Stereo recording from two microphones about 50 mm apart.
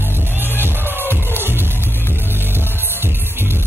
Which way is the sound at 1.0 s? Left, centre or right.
Left.